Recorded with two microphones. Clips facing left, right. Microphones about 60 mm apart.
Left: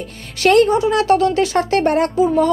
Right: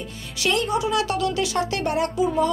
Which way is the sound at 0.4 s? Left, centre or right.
Left.